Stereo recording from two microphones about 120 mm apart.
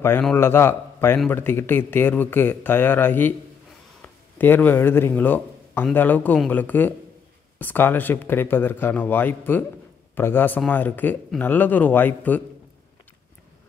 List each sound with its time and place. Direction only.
0.4 s a man's voice: 20° left (ahead or behind)